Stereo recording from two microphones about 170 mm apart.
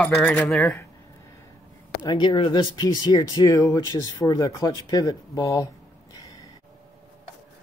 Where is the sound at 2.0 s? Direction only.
25° left (ahead or behind).